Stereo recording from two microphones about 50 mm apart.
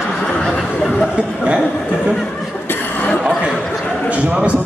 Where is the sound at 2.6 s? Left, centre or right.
Left.